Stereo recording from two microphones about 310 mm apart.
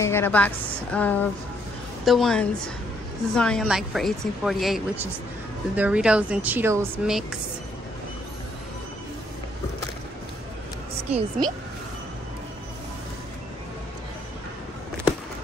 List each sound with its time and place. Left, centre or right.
0.0 s a woman's voice: centre
11.1 s a woman's voice: centre